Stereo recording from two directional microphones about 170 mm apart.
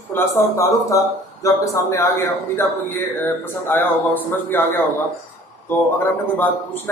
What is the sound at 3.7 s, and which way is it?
A man's voice, 10° left (ahead or behind).